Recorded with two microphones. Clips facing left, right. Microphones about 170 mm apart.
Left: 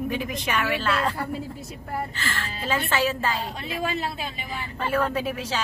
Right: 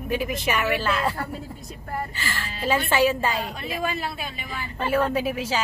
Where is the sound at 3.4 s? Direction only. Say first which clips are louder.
Right 1 dB; 25° left (ahead or behind).